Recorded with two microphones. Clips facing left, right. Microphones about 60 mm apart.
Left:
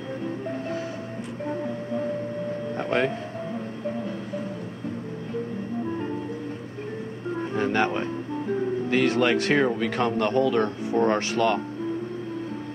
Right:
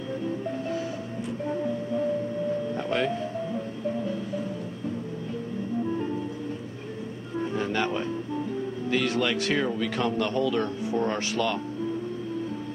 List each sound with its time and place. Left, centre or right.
0.5 s music: left
2.7 s vehicle: left
7.5 s music: left
8.8 s speech: left